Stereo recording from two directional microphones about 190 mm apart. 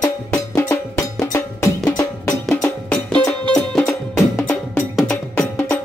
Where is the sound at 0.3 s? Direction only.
10° left (ahead or behind).